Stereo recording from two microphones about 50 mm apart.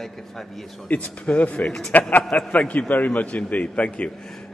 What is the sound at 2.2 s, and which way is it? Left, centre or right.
Speech, centre.